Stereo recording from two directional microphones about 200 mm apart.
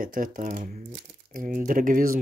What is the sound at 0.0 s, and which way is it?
Speech, 45° right (ahead or behind).